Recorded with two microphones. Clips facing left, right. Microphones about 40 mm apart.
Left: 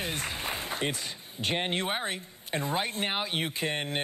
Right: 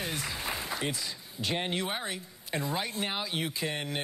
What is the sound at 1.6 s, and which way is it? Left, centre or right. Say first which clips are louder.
Speech: left 2 dB; left.